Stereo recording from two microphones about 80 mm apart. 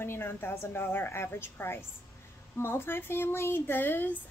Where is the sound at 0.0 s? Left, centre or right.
Left.